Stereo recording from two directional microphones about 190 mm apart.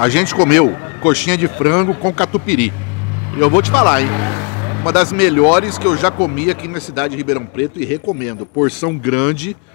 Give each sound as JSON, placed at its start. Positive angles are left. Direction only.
{"t": 0.0, "sound": "speech", "side_deg": 0}